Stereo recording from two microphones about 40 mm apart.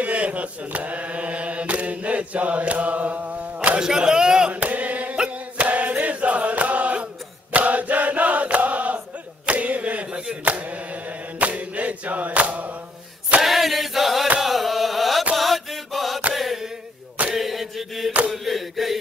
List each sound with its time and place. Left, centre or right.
0.0 s mantra: right
3.8 s a sound: centre
4.5 s chant: right
9.5 s a sound: right
10.0 s chop: right
10.4 s mantra: right
13.4 s chant: centre
14.4 s carnatic music: centre
15.3 s mantra: centre
16.3 s chant: centre